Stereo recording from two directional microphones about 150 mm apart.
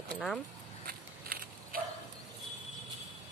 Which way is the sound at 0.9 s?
75° right (ahead or behind).